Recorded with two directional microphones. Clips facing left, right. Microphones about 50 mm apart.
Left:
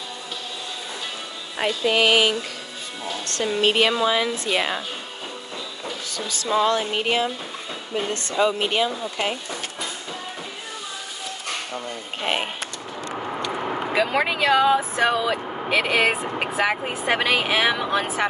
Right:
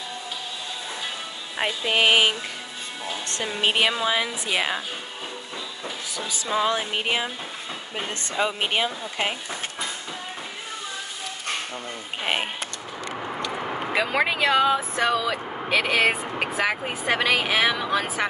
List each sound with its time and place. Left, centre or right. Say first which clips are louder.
1.6 s speech: left 2 dB; centre
3.4 s speech: left 3 dB; centre
5.9 s speech: left 2 dB; centre
8.4 s speech: left 3 dB; centre
12.2 s a sound: left 1 dB; centre
13.9 s speech: left 1 dB; centre
15.0 s speech: left 2 dB; centre
15.7 s speech: left 1 dB; centre